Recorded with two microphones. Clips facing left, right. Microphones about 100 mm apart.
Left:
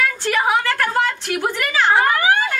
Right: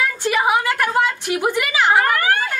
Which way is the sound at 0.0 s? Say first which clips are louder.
Even; 15° right (ahead or behind).